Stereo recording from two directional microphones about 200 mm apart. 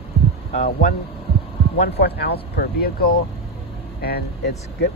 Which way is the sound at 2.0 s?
55° left (ahead or behind).